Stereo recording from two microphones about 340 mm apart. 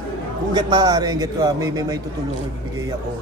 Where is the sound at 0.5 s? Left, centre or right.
Centre.